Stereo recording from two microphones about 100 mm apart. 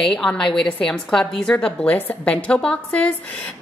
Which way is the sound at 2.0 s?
20° left (ahead or behind).